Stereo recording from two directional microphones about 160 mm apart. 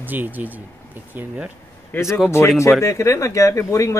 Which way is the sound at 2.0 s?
Centre (ahead or behind).